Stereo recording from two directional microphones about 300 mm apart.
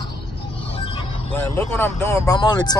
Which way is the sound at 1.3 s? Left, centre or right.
Centre.